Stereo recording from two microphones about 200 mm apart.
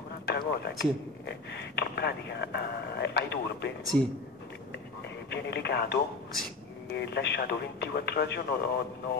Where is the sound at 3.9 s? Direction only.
10° left (ahead or behind).